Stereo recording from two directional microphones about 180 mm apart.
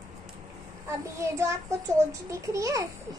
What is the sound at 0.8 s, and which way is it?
A child's voice, 15° right (ahead or behind).